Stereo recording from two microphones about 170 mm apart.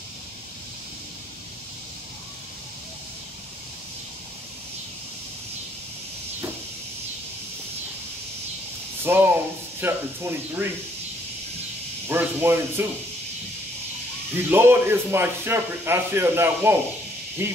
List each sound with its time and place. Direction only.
9.0 s a sound: 10° right (ahead or behind)
9.8 s speech: 15° right (ahead or behind)
12.1 s speech: 10° right (ahead or behind)
14.3 s speech: 15° right (ahead or behind)